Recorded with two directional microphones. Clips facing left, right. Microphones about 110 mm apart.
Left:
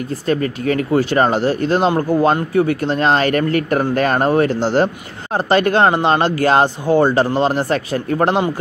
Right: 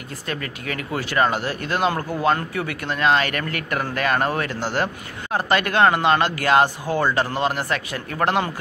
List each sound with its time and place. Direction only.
0.3 s speech: 35° left (ahead or behind)